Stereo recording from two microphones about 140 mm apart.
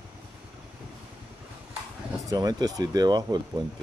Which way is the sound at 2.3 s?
25° right (ahead or behind).